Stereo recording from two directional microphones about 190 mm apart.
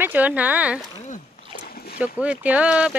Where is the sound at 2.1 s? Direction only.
5° right (ahead or behind).